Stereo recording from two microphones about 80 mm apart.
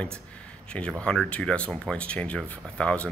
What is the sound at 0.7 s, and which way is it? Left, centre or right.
Speech, centre.